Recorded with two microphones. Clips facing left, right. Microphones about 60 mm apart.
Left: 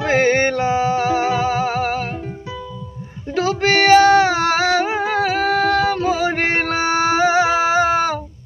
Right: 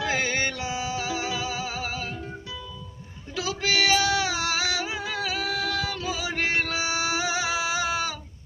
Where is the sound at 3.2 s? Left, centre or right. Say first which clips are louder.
Left 11 dB; left.